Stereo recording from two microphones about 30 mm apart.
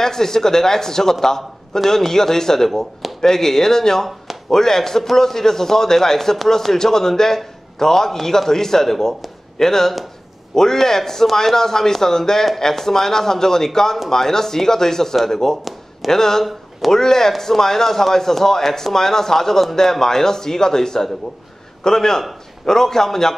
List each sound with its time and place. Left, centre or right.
0.0 s a man's voice: centre